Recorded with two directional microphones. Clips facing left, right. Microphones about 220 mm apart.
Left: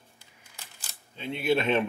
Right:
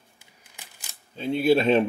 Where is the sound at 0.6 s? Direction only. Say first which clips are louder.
Right 1 dB; 15° right (ahead or behind).